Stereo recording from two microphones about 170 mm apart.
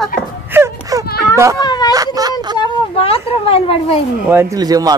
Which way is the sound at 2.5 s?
30° left (ahead or behind).